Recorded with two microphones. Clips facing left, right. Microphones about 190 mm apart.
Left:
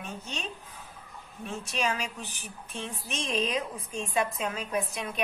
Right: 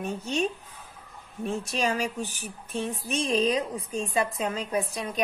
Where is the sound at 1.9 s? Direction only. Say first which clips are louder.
Right 5 dB; 40° right (ahead or behind).